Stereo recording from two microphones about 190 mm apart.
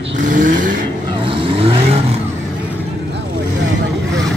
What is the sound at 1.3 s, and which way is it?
Vehicle, 30° right (ahead or behind).